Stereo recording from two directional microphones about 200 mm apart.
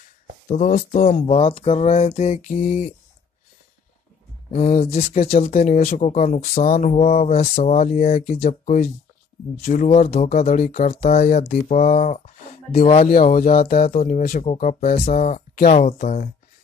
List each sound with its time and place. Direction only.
0.5 s speech: 40° left (ahead or behind)
4.5 s speech: 30° left (ahead or behind)
13.7 s speech: 45° left (ahead or behind)
14.4 s speech: 35° left (ahead or behind)